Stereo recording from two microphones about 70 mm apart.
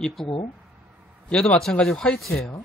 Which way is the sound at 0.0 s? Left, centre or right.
Centre.